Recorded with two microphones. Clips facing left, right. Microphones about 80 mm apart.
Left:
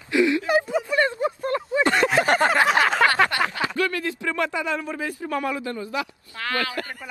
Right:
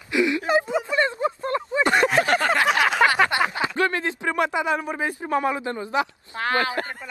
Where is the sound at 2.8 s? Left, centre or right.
Centre.